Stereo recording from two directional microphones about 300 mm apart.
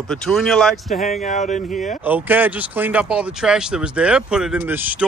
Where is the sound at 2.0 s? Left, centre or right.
Centre.